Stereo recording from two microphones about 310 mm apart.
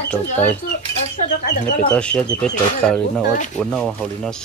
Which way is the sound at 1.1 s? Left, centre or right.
Left.